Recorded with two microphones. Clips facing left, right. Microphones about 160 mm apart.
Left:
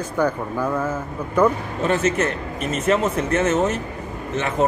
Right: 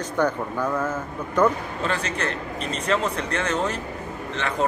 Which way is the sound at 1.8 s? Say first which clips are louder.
Left 8 dB; 25° left (ahead or behind).